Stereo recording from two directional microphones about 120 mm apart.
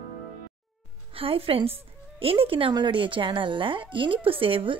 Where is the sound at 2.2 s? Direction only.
50° right (ahead or behind).